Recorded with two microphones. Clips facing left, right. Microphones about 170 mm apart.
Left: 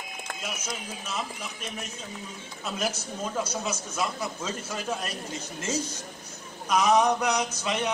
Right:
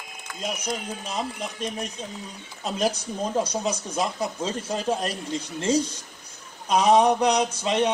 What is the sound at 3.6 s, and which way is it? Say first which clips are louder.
Speech: right 4 dB; 35° right (ahead or behind).